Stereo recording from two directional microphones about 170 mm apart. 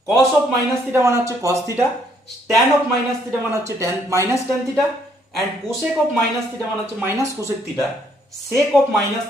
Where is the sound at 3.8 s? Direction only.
15° right (ahead or behind).